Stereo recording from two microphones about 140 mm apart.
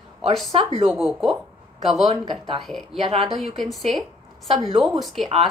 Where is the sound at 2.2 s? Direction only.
35° right (ahead or behind).